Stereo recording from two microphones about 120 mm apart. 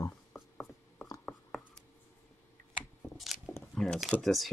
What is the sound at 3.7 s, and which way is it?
Speech, centre (ahead or behind).